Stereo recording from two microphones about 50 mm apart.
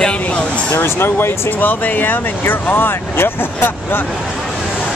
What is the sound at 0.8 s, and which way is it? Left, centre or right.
Speech, left.